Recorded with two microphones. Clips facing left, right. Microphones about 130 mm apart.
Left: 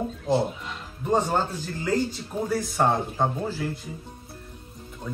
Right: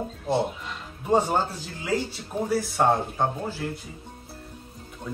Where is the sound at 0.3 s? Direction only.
5° right (ahead or behind).